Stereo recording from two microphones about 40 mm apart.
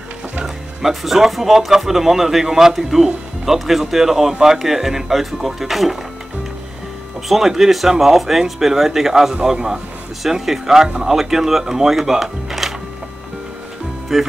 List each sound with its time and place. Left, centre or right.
0.8 s speech: centre
7.2 s speech: centre
14.1 s speech: centre